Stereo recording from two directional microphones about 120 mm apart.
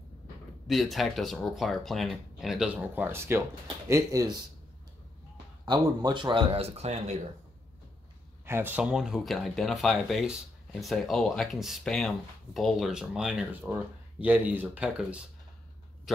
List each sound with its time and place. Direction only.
0.7 s speech: centre (ahead or behind); by 4.4 s 30° right (ahead or behind)
5.7 s speech: 40° right (ahead or behind); by 7.2 s 65° right (ahead or behind)
8.5 s speech: 20° right (ahead or behind)